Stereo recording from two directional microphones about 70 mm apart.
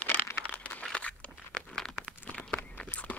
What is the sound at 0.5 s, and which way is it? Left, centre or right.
Crumpling, left.